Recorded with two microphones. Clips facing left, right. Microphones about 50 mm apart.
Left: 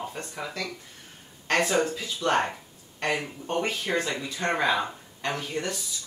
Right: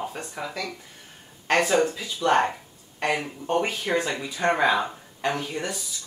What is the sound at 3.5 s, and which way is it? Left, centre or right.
Speech, centre.